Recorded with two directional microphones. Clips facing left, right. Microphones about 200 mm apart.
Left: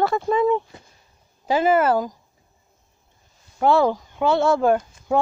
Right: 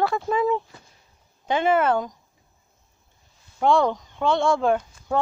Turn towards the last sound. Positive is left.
turn(degrees=5)  # may be behind; listen again after turning